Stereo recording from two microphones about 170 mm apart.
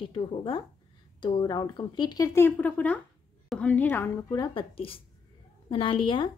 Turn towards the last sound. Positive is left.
turn(degrees=30)  # may be behind; listen again after turning